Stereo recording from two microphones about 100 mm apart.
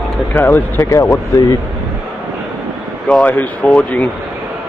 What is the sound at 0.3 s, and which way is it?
Speech, 20° left (ahead or behind).